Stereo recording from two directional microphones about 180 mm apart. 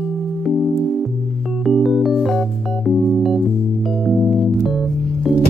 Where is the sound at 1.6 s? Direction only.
Centre (ahead or behind).